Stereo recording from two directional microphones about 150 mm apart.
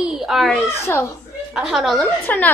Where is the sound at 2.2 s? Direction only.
10° left (ahead or behind).